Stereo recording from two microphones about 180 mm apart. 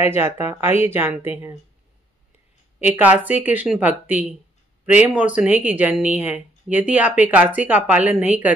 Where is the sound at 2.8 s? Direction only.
10° right (ahead or behind).